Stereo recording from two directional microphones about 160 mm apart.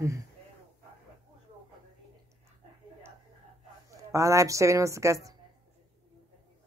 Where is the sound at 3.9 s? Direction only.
20° right (ahead or behind).